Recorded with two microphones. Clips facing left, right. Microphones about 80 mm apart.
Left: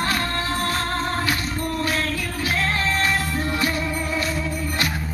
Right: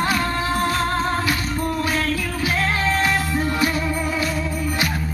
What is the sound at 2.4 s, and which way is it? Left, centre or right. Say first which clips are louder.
Music: right 2 dB; centre.